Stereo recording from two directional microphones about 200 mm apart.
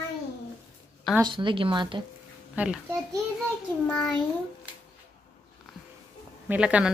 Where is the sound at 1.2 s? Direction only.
25° right (ahead or behind).